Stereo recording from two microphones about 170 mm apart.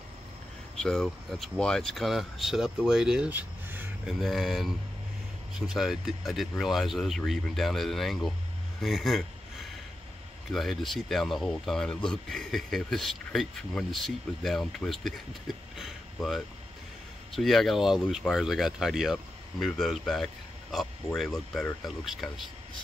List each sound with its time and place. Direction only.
0.7 s speech: 5° left (ahead or behind)
4.2 s speech: centre (ahead or behind)
10.5 s speech: centre (ahead or behind)